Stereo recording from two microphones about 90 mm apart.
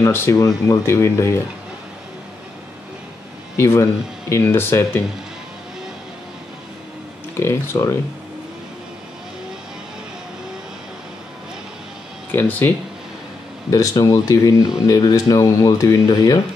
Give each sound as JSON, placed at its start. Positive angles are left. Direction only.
{"t": 0.0, "sound": "speech", "side_deg": 30}
{"t": 3.5, "sound": "speech", "side_deg": 30}
{"t": 7.3, "sound": "speech", "side_deg": 25}
{"t": 12.3, "sound": "speech", "side_deg": 20}
{"t": 13.7, "sound": "speech", "side_deg": 40}